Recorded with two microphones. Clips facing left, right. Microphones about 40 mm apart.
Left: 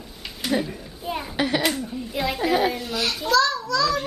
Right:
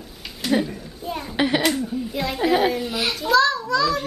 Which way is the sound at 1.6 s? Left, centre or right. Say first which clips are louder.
Right 3 dB; centre.